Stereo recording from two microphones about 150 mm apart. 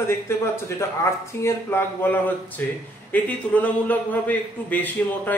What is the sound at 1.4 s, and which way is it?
A man's voice, 15° left (ahead or behind).